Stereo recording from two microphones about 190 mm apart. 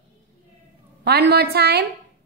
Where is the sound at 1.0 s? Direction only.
55° right (ahead or behind).